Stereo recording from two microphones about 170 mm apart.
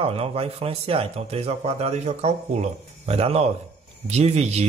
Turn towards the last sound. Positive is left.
turn(degrees=-40)  # may be behind; listen again after turning